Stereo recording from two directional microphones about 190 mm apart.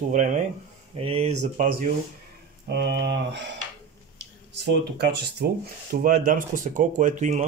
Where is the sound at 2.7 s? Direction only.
65° right (ahead or behind).